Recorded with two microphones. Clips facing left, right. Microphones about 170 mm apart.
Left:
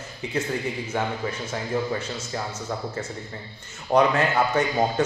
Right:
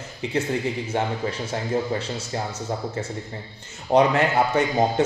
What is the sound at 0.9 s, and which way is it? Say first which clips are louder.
Speech: right 2 dB; 25° right (ahead or behind).